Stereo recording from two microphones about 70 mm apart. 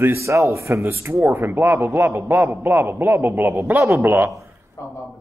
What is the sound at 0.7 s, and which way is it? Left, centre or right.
A man's voice, right.